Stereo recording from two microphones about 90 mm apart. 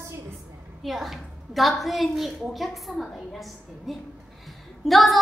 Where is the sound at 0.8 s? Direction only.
Centre (ahead or behind).